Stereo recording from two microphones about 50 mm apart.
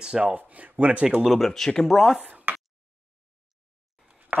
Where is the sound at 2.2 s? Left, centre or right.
Right.